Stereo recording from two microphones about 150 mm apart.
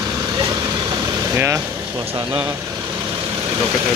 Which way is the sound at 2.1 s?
10° right (ahead or behind).